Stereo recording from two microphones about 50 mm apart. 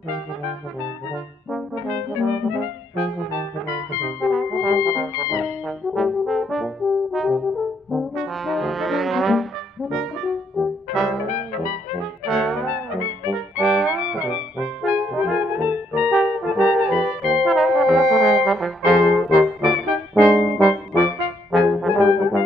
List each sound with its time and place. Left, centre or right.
3.0 s brass instrument: centre
3.3 s brass instrument: left
4.2 s brass instrument: centre
4.7 s brass instrument: left
5.9 s brass instrument: centre
13.3 s music: centre
13.9 s music: right
14.9 s brass instrument: right
15.4 s brass instrument: right
16.1 s music: centre
16.9 s brass instrument: centre